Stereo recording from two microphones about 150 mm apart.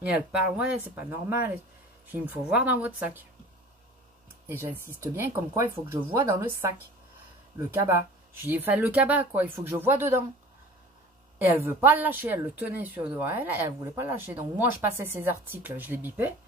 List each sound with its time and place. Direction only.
0.9 s speech: 15° right (ahead or behind)
4.5 s speech: 15° right (ahead or behind)
11.3 s speech: 10° right (ahead or behind)